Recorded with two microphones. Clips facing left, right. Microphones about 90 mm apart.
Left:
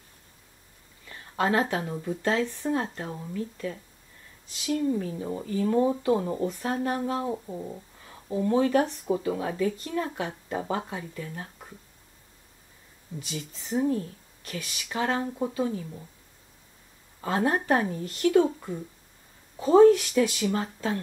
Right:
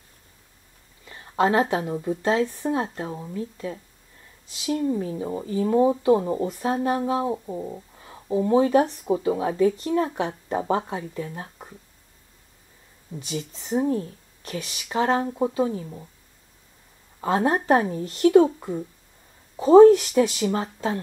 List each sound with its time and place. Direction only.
1.0 s speech: 25° right (ahead or behind)
4.8 s speech: 20° right (ahead or behind)
13.2 s speech: 30° right (ahead or behind)
17.2 s speech: 25° right (ahead or behind)